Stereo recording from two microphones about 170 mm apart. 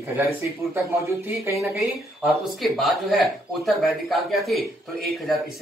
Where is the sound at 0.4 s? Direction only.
15° right (ahead or behind).